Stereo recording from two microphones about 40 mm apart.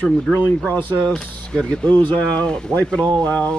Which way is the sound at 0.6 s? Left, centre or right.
Left.